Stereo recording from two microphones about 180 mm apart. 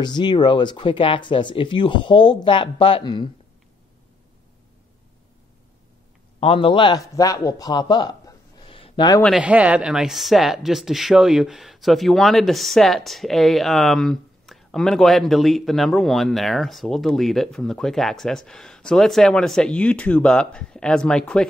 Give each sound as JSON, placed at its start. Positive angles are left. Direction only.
{"t": 0.0, "sound": "speech", "side_deg": 25}
{"t": 6.4, "sound": "a man's voice", "side_deg": 30}
{"t": 9.2, "sound": "speech", "side_deg": -5}